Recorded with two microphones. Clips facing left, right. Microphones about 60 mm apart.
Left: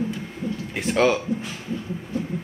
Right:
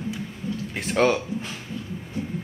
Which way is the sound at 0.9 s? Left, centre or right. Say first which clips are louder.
Left 1 dB; centre.